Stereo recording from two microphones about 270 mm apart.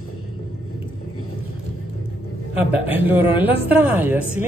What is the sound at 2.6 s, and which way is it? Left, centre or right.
Speech, centre.